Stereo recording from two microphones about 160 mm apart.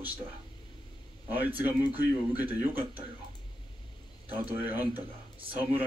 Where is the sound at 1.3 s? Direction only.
10° right (ahead or behind).